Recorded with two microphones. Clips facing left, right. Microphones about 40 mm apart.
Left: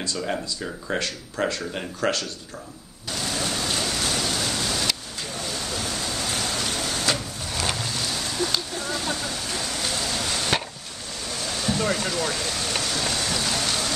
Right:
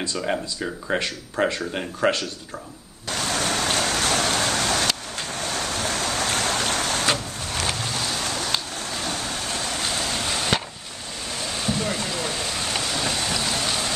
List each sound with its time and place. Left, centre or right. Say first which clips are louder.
0.2 s speech: right 2 dB; centre
3.1 s vehicle: right 3 dB; right
9.1 s waves: right 1 dB; right
10.3 s chop: right 1 dB; centre
11.4 s a sound: left 2 dB; centre
12.7 s vehicle: right 1 dB; centre